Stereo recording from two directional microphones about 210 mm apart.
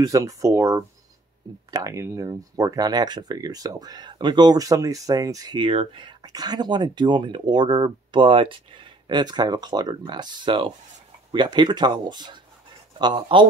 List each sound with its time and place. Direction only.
0.0 s speech: 15° right (ahead or behind)